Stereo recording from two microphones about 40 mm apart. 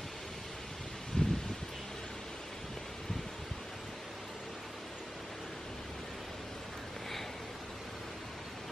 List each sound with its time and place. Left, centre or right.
1.2 s rustling leaves: centre